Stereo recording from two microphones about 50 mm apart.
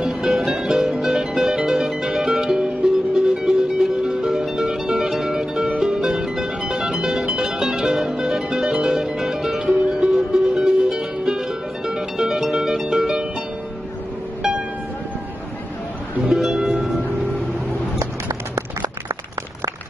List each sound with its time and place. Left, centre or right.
0.0 s music: centre
16.2 s music: centre
17.9 s a sound: right